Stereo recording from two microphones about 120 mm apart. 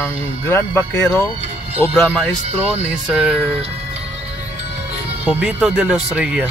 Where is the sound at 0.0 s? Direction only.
20° left (ahead or behind).